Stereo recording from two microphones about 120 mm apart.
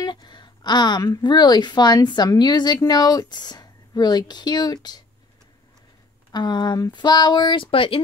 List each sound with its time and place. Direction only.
0.0 s a woman's voice: 40° left (ahead or behind)
6.3 s a woman's voice: 35° left (ahead or behind)